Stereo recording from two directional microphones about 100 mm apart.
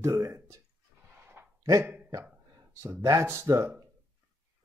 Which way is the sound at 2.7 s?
30° right (ahead or behind).